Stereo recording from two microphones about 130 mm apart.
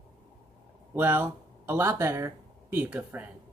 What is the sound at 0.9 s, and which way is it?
Speech, 15° right (ahead or behind).